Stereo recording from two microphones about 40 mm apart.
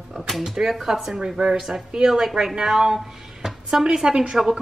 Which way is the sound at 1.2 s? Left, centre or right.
Centre.